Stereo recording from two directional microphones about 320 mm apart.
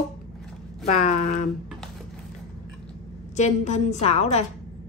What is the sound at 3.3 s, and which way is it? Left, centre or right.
Speech, left.